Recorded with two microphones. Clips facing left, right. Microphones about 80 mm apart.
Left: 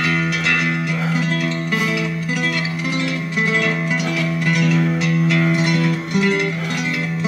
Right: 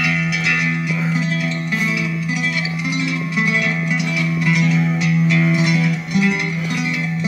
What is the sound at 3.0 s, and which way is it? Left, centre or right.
Music, left.